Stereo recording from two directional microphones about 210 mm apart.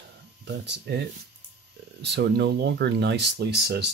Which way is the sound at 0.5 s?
55° right (ahead or behind).